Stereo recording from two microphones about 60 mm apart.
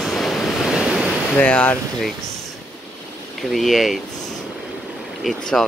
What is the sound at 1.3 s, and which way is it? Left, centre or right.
Speech, left.